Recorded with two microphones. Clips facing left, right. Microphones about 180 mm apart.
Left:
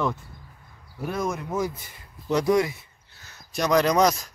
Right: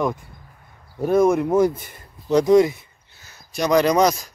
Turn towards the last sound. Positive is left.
turn(degrees=0)  # may be behind; listen again after turning